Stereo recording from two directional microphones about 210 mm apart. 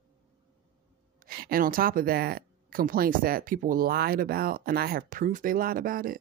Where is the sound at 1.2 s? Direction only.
45° right (ahead or behind).